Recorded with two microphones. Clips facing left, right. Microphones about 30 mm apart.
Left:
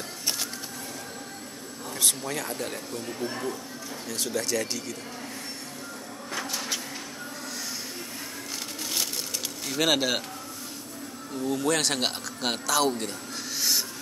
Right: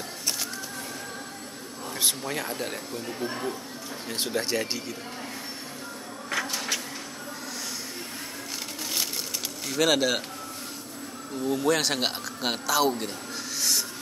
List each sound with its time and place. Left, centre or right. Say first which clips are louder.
2.0 s speech: even; centre
4.1 s speech: right 1 dB; right
9.7 s speech: right 1 dB; centre
11.3 s speech: right 1 dB; centre
13.6 s a sound: even; centre